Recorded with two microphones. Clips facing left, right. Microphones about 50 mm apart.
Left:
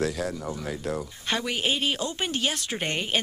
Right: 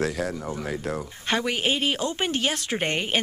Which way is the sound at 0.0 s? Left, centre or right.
Right.